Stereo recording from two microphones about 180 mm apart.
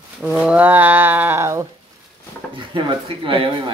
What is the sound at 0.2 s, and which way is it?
Speech, 5° right (ahead or behind).